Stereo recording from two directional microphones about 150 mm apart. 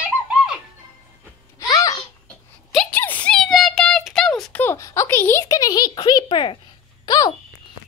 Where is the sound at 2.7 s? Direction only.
10° left (ahead or behind).